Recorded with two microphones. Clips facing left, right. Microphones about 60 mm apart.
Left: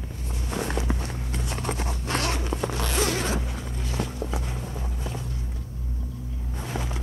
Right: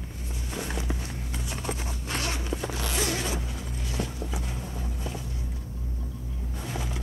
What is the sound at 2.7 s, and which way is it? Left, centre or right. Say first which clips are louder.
Zipper: left 4 dB; left.